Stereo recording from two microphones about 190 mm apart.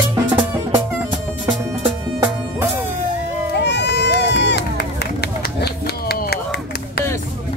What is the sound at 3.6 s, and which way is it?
Run, 65° left (ahead or behind).